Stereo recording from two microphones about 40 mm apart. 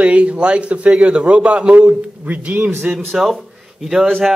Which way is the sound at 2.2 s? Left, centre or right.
Right.